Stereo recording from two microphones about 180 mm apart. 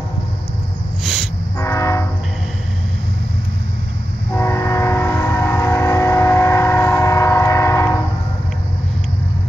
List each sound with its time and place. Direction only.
1.0 s train: centre (ahead or behind)
1.6 s train: 15° left (ahead or behind)
4.3 s train: 15° left (ahead or behind)